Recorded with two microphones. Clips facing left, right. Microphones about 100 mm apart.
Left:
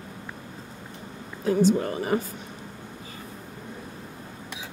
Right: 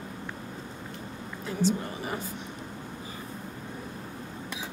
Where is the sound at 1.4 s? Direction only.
50° left (ahead or behind).